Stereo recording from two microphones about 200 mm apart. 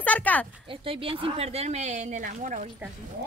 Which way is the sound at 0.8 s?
25° right (ahead or behind).